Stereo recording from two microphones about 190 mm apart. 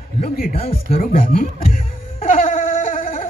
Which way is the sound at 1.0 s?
50° left (ahead or behind).